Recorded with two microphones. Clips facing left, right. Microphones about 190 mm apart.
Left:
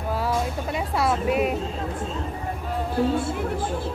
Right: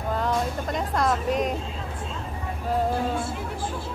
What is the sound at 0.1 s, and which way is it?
Music, 5° left (ahead or behind).